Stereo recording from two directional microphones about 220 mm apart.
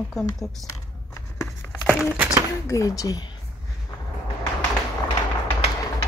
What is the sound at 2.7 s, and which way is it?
Speech, 15° left (ahead or behind).